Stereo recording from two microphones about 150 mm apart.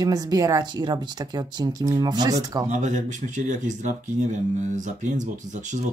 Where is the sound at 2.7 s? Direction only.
55° right (ahead or behind).